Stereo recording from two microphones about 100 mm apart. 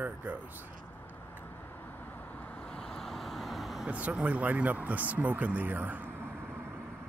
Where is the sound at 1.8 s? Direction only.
20° left (ahead or behind); by 3.8 s centre (ahead or behind).